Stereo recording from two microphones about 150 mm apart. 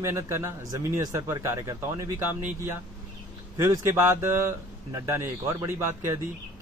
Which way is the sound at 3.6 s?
20° right (ahead or behind).